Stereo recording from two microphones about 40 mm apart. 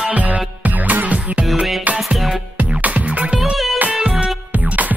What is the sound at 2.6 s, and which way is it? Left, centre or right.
Music, right.